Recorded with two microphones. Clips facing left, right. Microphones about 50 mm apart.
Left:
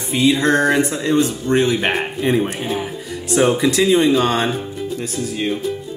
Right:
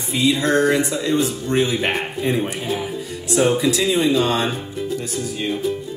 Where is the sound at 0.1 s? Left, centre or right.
Left.